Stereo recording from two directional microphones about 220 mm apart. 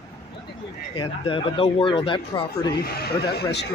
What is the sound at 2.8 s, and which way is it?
Speech, 45° left (ahead or behind).